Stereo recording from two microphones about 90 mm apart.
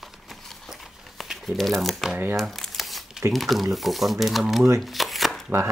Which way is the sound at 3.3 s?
Centre (ahead or behind).